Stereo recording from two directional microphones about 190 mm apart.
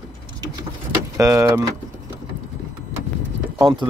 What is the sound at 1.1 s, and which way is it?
Speech, 15° right (ahead or behind).